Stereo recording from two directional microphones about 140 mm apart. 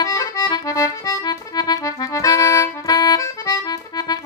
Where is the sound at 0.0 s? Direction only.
25° left (ahead or behind).